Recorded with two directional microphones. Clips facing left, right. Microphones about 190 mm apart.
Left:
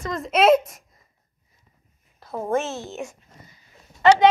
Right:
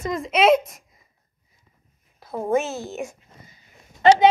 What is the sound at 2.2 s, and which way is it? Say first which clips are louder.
Speech: right 2 dB; 5° right (ahead or behind).